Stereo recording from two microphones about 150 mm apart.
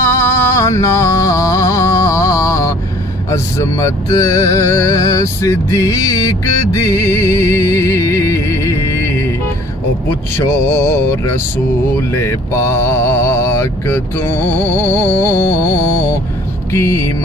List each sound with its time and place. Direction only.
0.0 s music: 15° left (ahead or behind)
3.3 s speech: 20° left (ahead or behind)
10.3 s mantra: 15° left (ahead or behind)